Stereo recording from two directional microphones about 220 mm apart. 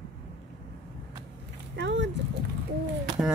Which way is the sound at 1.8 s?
55° right (ahead or behind).